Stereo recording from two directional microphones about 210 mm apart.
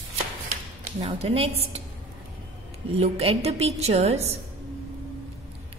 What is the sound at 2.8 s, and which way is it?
A woman's voice, 30° right (ahead or behind).